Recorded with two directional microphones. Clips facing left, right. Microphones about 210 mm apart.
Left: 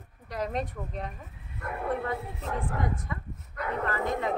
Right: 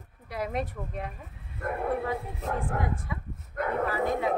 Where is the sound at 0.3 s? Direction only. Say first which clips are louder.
Even; 5° right (ahead or behind).